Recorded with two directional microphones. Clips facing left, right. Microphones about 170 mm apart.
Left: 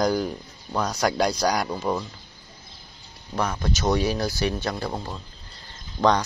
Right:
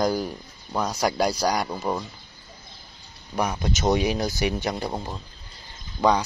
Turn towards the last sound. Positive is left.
turn(degrees=20)  # may be behind; listen again after turning